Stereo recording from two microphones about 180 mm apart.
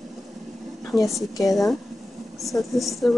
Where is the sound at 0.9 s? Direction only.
Centre (ahead or behind).